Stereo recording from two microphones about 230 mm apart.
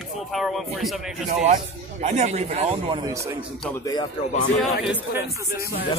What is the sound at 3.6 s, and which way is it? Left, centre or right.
Speech, centre.